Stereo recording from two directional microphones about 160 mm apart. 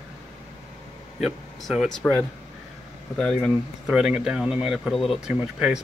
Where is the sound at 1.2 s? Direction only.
Centre (ahead or behind).